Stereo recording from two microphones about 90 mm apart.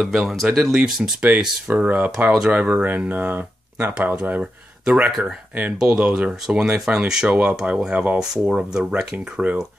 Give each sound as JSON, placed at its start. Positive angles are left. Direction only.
{"t": 0.0, "sound": "speech", "side_deg": 0}
{"t": 2.6, "sound": "speech", "side_deg": -20}